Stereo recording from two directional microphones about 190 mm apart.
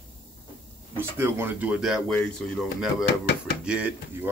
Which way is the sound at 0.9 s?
10° right (ahead or behind).